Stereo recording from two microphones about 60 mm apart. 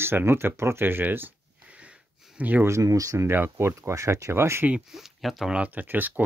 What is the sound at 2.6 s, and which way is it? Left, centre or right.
Speech, right.